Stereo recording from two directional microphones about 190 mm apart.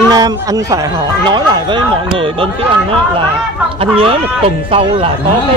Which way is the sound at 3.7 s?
30° right (ahead or behind).